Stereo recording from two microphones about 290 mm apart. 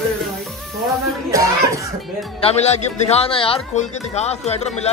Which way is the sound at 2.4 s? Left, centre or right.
Left.